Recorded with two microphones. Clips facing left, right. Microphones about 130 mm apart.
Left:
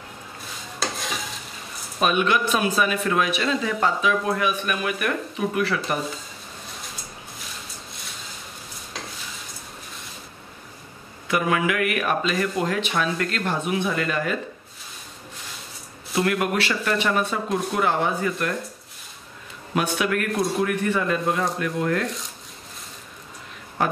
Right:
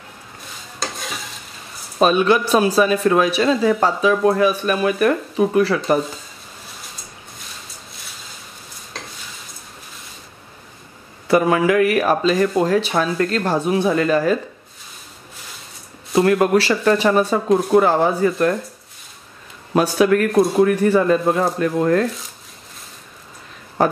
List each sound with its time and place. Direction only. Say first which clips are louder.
0.7 s stir: even; centre (ahead or behind)
2.0 s speech: right 6 dB; 35° right (ahead or behind)
11.2 s speech: right 7 dB; 35° right (ahead or behind)
16.2 s speech: right 8 dB; 35° right (ahead or behind)
19.7 s speech: right 8 dB; 35° right (ahead or behind)
23.8 s speech: right 6 dB; 35° right (ahead or behind)